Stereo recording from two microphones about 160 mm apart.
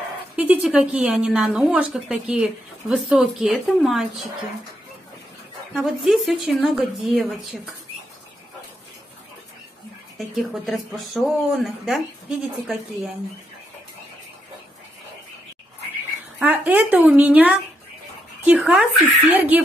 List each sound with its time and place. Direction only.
0.4 s a woman's voice: 5° right (ahead or behind)
5.8 s a woman's voice: centre (ahead or behind)
10.1 s a woman's voice: centre (ahead or behind)
16.3 s a woman's voice: 10° right (ahead or behind)